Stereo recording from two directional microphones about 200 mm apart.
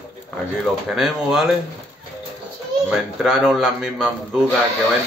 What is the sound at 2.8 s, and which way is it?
A man's voice, 5° right (ahead or behind).